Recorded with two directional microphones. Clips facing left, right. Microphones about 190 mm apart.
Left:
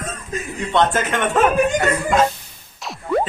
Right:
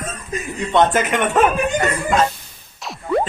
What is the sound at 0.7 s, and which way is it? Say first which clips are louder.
Speech: right 2 dB; 20° right (ahead or behind).